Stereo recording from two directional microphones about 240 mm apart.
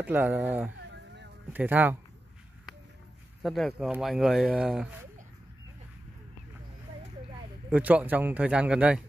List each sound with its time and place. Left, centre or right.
0.0 s speech: centre
0.9 s a sound: right
1.5 s speech: centre
3.4 s speech: centre
7.7 s speech: centre